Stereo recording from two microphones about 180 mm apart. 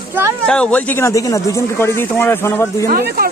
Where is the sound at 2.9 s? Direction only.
55° right (ahead or behind).